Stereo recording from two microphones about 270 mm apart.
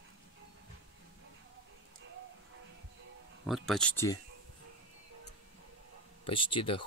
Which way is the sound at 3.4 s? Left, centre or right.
Centre.